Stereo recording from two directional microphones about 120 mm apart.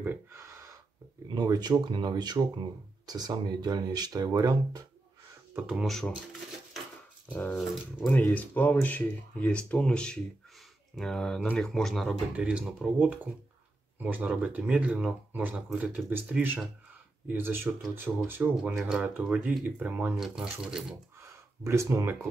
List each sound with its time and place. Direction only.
0.0 s speech: 20° right (ahead or behind)
1.3 s speech: 35° right (ahead or behind)
5.5 s speech: 10° right (ahead or behind)
5.9 s speech: 5° left (ahead or behind)
7.3 s speech: 15° left (ahead or behind); by 18.5 s 15° right (ahead or behind)
18.6 s speech: 5° right (ahead or behind)
20.2 s speech: 5° right (ahead or behind)
21.6 s speech: 25° right (ahead or behind)